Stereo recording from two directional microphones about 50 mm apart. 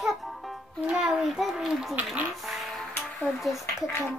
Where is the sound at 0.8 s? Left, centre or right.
Centre.